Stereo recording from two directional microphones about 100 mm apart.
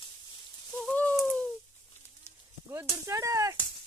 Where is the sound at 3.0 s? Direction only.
35° right (ahead or behind).